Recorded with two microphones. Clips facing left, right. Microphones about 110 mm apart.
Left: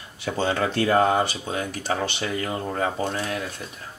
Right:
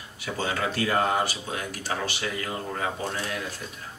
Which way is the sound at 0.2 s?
30° left (ahead or behind).